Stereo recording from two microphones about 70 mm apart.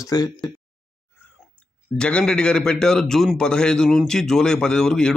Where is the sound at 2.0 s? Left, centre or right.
Centre.